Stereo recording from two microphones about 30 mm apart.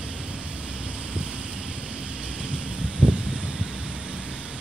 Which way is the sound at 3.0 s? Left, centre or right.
Right.